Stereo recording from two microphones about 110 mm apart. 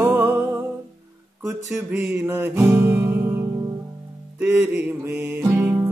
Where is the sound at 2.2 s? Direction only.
20° right (ahead or behind).